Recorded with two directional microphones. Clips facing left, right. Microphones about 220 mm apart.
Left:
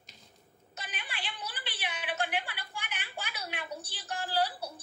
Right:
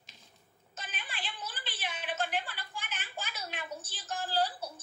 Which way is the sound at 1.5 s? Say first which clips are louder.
Left 1 dB; 60° left (ahead or behind).